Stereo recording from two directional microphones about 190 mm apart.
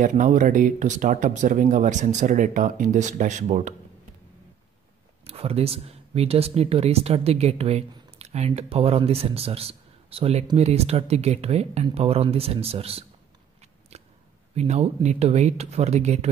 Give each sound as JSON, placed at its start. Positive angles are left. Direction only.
{"t": 0.0, "sound": "speech", "side_deg": -45}
{"t": 5.2, "sound": "speech", "side_deg": -30}
{"t": 14.5, "sound": "speech", "side_deg": -35}